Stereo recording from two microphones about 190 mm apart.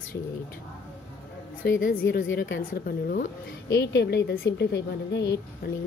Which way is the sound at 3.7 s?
60° left (ahead or behind).